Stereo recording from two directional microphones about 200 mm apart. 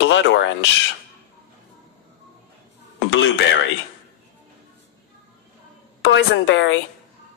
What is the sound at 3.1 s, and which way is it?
Speech, 65° left (ahead or behind).